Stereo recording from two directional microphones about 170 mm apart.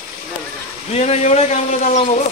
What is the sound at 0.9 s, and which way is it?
A man's voice, 40° left (ahead or behind).